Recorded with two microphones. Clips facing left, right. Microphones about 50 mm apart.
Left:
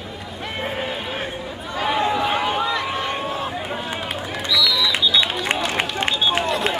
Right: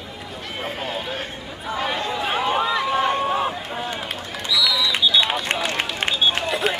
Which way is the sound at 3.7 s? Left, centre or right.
Centre.